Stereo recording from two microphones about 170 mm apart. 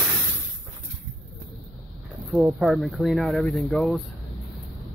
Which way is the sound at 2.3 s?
Centre (ahead or behind).